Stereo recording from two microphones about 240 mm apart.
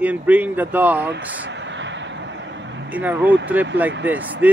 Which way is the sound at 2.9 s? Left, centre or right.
Centre.